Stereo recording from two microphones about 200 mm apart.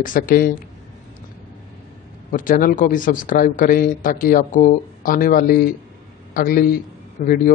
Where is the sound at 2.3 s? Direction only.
45° left (ahead or behind).